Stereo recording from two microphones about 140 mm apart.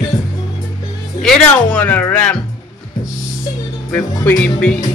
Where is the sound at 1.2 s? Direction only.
5° left (ahead or behind).